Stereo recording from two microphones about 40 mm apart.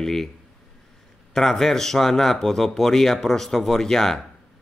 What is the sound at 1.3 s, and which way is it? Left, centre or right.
A man's voice, centre.